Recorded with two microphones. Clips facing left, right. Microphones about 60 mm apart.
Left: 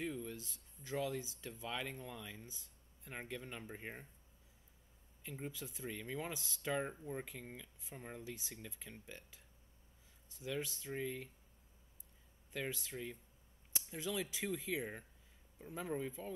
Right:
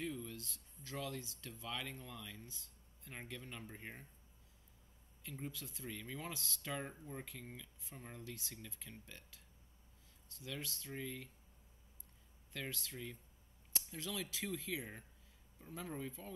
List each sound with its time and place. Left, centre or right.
0.0 s speech: centre
5.2 s speech: centre
10.4 s speech: centre
12.5 s speech: centre